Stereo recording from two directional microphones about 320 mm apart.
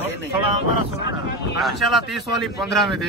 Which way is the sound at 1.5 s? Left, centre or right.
Centre.